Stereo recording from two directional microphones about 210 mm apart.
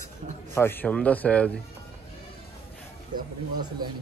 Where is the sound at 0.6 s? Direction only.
10° left (ahead or behind).